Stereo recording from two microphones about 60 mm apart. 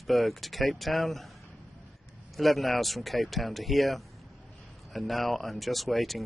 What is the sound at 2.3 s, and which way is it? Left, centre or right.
Speech, centre.